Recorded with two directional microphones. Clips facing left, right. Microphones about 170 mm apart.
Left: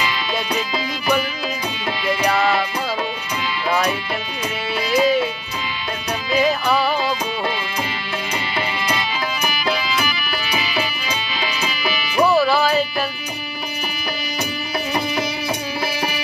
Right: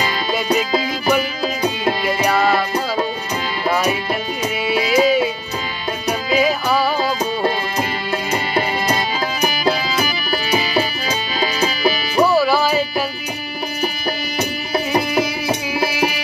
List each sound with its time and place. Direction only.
0.0 s music: 45° right (ahead or behind)
4.8 s music: 10° right (ahead or behind)
6.3 s music: 5° right (ahead or behind)
8.3 s music: 45° right (ahead or behind)
12.3 s music: 10° right (ahead or behind)
15.0 s music: 5° right (ahead or behind)